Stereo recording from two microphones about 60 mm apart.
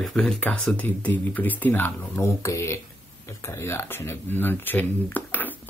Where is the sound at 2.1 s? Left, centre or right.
Left.